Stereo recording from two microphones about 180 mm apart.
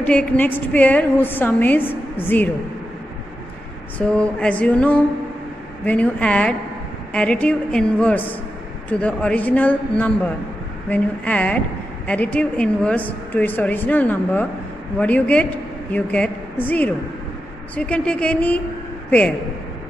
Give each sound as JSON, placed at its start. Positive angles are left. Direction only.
{"t": 0.0, "sound": "a woman's voice", "side_deg": 5}
{"t": 4.0, "sound": "a woman's voice", "side_deg": 5}